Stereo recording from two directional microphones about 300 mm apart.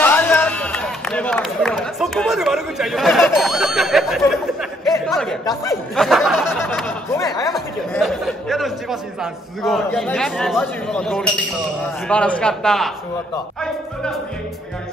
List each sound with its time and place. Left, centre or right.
0.0 s run: centre
4.3 s chatter: centre
5.4 s snicker: centre
7.5 s a sound: centre
9.2 s speech: centre